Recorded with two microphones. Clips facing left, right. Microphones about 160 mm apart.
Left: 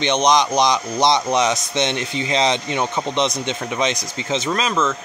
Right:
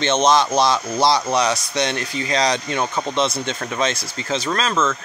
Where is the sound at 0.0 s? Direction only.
15° left (ahead or behind).